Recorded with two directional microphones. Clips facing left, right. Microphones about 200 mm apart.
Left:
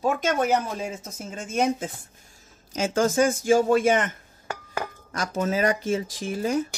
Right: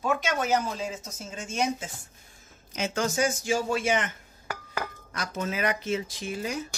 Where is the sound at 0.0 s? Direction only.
50° left (ahead or behind).